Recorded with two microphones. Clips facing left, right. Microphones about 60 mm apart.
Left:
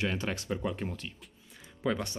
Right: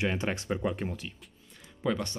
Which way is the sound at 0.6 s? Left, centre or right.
Centre.